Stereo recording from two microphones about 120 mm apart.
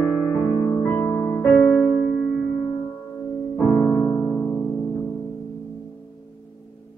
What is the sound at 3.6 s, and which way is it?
Piano, 20° left (ahead or behind).